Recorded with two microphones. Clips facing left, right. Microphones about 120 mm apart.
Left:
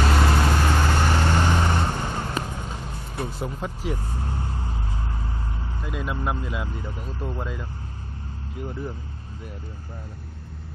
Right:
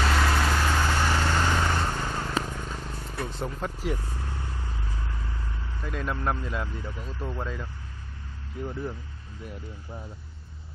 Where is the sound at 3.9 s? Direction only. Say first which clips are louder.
Left 5 dB; 35° left (ahead or behind).